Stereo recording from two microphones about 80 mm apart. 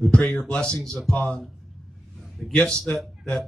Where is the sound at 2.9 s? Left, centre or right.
Centre.